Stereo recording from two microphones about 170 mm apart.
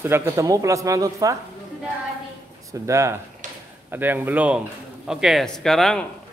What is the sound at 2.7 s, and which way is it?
Speech, 15° right (ahead or behind).